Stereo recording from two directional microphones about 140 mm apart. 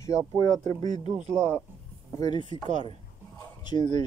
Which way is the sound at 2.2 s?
35° left (ahead or behind).